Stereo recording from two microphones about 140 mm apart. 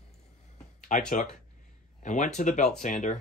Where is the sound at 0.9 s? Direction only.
65° left (ahead or behind).